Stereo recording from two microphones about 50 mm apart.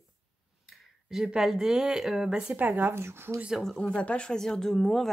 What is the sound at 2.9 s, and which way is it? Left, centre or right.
Speech, right.